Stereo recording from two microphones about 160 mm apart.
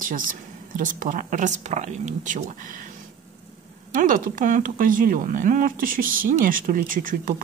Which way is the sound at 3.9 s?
60° right (ahead or behind).